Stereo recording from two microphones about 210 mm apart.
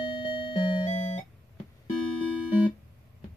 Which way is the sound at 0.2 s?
25° left (ahead or behind).